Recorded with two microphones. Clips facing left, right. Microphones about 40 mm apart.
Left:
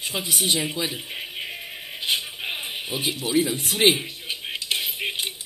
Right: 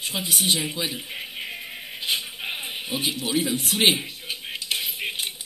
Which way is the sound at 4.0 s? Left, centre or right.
Centre.